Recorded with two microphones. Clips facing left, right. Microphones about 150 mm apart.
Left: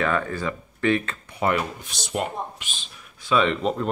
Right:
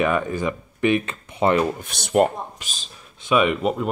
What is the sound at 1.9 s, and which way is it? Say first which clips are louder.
Speech: right 10 dB; 60° right (ahead or behind).